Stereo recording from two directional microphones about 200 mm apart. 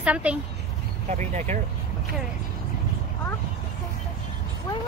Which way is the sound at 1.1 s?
35° right (ahead or behind).